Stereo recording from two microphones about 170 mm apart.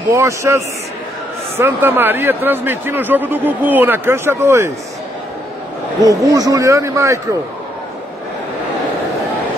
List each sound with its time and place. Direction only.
0.1 s speech: 15° right (ahead or behind)
5.9 s speech: 20° right (ahead or behind)